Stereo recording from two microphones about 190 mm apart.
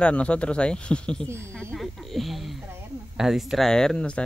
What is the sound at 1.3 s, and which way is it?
Speech, 15° right (ahead or behind).